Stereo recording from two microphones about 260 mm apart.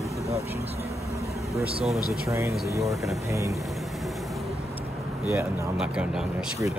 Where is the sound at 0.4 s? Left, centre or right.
Centre.